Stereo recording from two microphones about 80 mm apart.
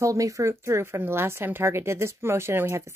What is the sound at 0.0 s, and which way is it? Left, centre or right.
Speech, right.